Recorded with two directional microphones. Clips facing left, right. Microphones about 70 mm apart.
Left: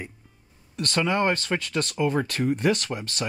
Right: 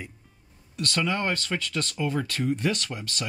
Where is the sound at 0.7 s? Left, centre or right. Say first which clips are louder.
Left 3 dB; left.